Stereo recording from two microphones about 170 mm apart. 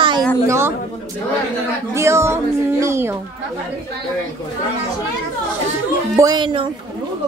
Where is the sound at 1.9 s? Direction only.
15° right (ahead or behind).